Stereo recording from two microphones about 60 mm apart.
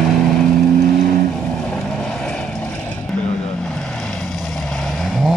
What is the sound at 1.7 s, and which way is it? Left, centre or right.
Vehicle, centre.